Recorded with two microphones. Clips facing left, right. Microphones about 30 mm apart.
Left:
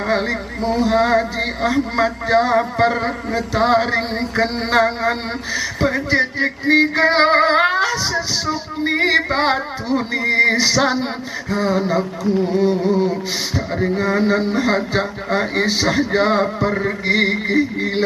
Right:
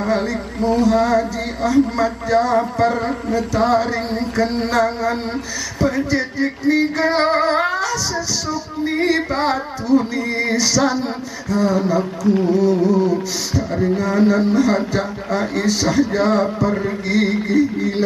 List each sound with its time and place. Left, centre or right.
0.0 s a sound: left
0.7 s music: left
12.2 s carnatic music: centre
12.8 s speech: left
14.9 s music: left